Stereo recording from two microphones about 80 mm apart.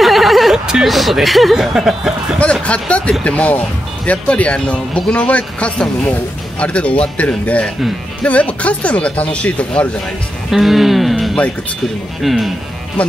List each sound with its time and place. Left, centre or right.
0.0 s speech: centre
2.4 s speech: centre
10.5 s speech: centre